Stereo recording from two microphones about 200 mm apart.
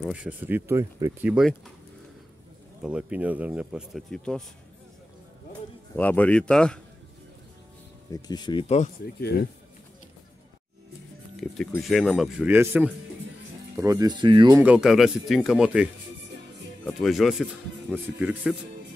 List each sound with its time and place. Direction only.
0.0 s speech: 5° right (ahead or behind)
2.8 s speech: 5° right (ahead or behind)
5.9 s speech: 10° left (ahead or behind)
8.1 s speech: 20° left (ahead or behind)
9.0 s speech: 50° left (ahead or behind)
11.5 s speech: centre (ahead or behind); by 14.6 s 25° right (ahead or behind)
14.6 s speech: 5° right (ahead or behind)